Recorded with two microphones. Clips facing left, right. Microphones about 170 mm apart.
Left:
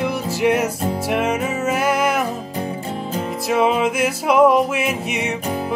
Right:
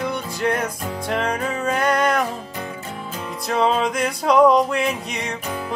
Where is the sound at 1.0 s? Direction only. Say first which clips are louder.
Left 1 dB; 5° left (ahead or behind).